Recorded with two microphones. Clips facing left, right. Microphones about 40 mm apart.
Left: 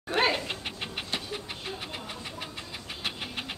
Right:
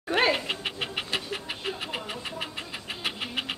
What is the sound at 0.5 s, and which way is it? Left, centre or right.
Dog, right.